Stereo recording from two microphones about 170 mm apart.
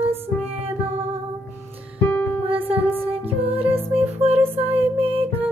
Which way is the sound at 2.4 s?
35° right (ahead or behind).